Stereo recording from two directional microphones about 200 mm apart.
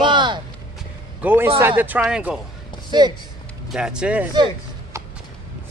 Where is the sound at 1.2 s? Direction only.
10° right (ahead or behind).